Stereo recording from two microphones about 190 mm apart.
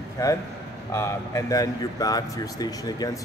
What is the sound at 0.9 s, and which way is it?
Speech, 15° left (ahead or behind).